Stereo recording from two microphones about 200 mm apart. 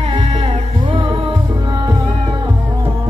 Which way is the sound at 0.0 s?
25° right (ahead or behind).